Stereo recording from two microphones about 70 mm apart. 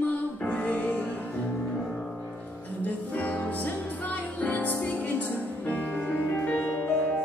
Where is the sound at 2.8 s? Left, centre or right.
Left.